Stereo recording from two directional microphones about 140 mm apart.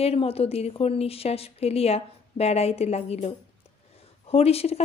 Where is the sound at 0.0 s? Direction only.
45° left (ahead or behind).